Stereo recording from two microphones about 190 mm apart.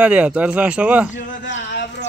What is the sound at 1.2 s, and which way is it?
Speech, 75° left (ahead or behind).